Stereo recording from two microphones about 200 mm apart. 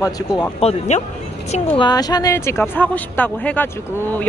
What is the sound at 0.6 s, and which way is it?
Speech, 35° left (ahead or behind).